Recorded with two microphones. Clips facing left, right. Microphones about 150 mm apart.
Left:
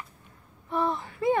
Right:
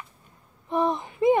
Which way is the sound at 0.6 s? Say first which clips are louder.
Right 3 dB; 20° right (ahead or behind).